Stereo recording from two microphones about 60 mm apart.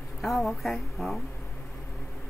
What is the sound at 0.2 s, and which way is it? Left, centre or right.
Speech, centre.